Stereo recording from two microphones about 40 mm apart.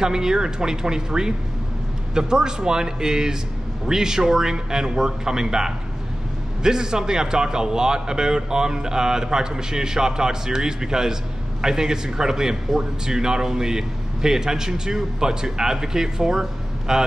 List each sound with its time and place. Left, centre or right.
0.0 s a man's voice: centre